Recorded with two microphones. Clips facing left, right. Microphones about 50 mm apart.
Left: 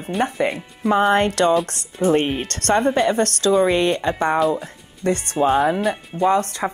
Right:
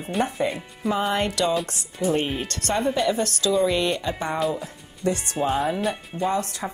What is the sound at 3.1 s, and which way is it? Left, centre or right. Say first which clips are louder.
A woman's voice: left 5 dB; left.